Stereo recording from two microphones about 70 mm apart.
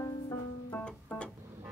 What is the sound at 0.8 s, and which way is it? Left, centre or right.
Music, centre.